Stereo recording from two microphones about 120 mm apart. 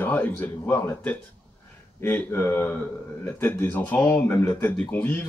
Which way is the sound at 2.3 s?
25° left (ahead or behind).